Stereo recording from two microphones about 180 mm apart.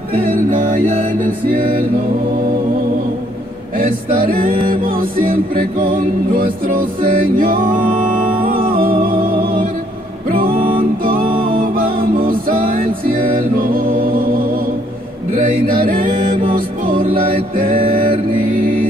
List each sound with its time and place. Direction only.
0.3 s music: 45° right (ahead or behind)
3.7 s music: 50° right (ahead or behind)
10.5 s music: 30° right (ahead or behind)
11.1 s music: 50° right (ahead or behind)
15.3 s mantra: 50° right (ahead or behind)
16.5 s music: 50° right (ahead or behind)